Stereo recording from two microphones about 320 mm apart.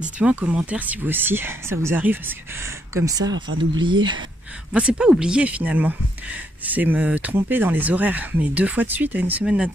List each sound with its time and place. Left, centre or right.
0.2 s speech: centre
3.3 s speech: right
3.7 s speech: centre
4.7 s speech: centre